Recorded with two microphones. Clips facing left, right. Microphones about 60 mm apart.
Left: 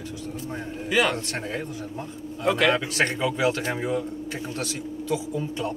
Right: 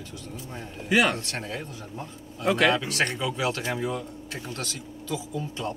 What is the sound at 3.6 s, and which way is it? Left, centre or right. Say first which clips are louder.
Speech: left 1 dB; left.